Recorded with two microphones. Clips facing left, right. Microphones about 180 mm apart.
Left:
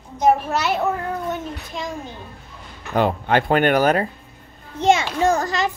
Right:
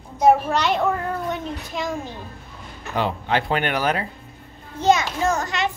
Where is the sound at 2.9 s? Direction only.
50° left (ahead or behind).